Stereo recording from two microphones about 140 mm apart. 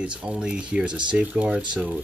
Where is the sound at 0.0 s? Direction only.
10° right (ahead or behind).